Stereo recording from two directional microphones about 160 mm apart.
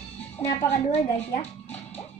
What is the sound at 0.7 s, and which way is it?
Speech, 40° left (ahead or behind).